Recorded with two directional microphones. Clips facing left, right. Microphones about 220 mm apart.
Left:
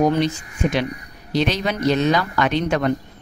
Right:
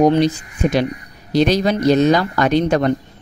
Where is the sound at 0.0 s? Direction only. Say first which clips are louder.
Right 5 dB; 35° right (ahead or behind).